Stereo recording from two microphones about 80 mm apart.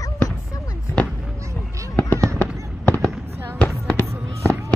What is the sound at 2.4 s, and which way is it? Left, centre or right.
Fireworks, centre.